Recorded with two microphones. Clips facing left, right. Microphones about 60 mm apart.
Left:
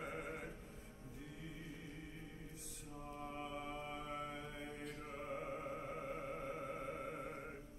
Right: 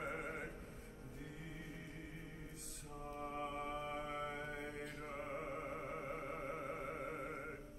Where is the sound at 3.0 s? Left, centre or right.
Right.